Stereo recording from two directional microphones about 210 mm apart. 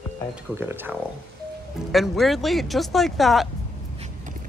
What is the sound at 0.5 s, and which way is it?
Speech, 10° right (ahead or behind).